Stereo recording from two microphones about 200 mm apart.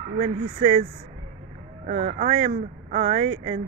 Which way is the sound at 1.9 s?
35° right (ahead or behind).